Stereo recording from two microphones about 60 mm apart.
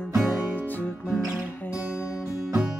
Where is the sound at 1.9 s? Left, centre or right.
Left.